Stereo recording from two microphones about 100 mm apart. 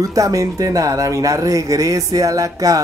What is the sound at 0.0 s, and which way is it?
Speech, 35° right (ahead or behind).